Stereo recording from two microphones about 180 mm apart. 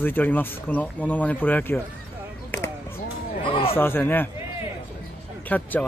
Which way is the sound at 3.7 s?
10° left (ahead or behind).